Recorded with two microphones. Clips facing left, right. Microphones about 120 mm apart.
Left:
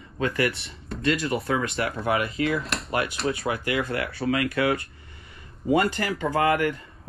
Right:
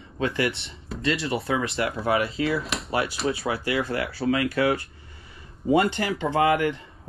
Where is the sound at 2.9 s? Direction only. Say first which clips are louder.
Right 1 dB; 30° right (ahead or behind).